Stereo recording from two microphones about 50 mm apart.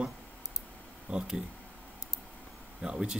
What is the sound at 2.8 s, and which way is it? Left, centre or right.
Speech, centre.